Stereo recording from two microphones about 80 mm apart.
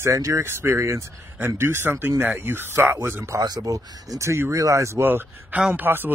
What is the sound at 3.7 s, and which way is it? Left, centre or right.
Speech, right.